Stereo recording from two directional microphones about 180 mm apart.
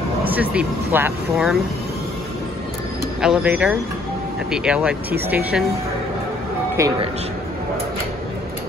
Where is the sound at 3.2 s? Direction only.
5° right (ahead or behind).